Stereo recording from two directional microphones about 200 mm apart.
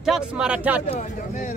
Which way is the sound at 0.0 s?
5° right (ahead or behind).